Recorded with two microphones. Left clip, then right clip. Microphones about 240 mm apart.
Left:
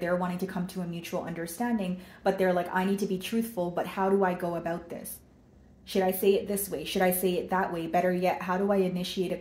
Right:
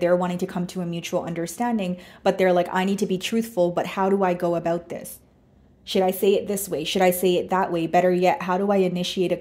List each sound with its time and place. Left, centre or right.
0.0 s speech: right